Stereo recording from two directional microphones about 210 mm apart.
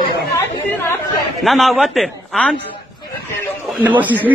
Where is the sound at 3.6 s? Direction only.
10° right (ahead or behind).